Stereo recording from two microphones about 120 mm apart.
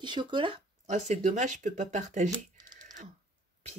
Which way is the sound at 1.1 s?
90° right.